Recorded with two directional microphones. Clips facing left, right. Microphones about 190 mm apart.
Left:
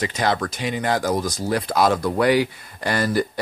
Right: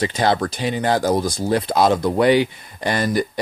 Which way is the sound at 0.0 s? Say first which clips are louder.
Right 3 dB; 30° right (ahead or behind).